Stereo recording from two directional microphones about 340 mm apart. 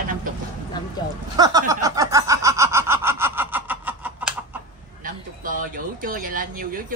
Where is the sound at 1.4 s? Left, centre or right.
Centre.